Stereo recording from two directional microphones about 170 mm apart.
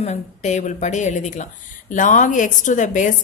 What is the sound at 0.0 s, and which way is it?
A woman's voice, 40° left (ahead or behind).